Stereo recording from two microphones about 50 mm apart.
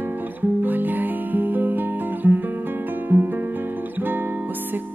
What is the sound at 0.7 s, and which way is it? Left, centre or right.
Music, right.